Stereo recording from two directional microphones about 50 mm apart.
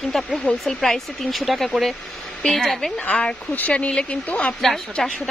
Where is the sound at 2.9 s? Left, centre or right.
Left.